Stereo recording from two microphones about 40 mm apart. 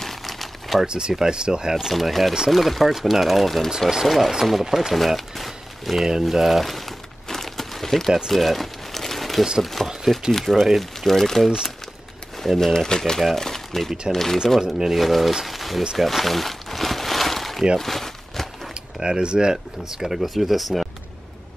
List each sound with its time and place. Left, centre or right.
0.0 s a sound: centre
0.8 s speech: right
2.0 s speech: centre
6.2 s crumpling: centre
8.3 s a sound: centre
9.6 s speech: centre
9.8 s speech: centre
10.3 s speech: centre
12.7 s speech: centre
16.0 s a sound: centre
17.7 s crumpling: centre
18.9 s speech: centre